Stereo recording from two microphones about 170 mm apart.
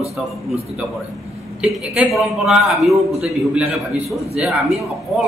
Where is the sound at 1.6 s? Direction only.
5° right (ahead or behind).